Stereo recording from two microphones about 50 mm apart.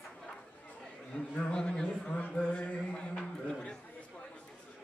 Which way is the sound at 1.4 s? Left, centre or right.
Centre.